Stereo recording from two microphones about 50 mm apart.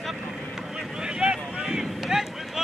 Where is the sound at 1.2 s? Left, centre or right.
Centre.